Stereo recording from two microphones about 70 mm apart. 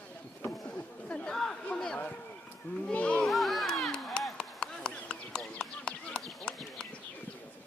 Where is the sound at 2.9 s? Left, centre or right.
Centre.